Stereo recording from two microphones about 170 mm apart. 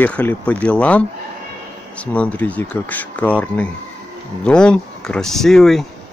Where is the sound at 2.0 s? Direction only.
10° left (ahead or behind).